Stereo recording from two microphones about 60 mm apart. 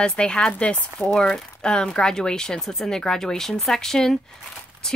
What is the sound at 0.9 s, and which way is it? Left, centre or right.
Speech, centre.